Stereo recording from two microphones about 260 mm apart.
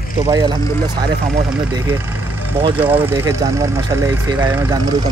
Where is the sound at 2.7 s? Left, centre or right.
Centre.